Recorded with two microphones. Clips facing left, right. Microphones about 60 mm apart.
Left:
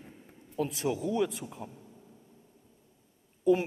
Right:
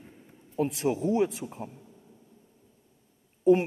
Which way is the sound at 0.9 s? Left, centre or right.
Right.